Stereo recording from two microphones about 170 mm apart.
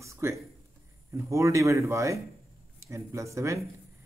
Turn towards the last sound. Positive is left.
turn(degrees=-15)  # may be behind; listen again after turning